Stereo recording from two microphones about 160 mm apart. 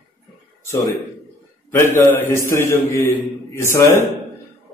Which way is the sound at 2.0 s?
15° left (ahead or behind).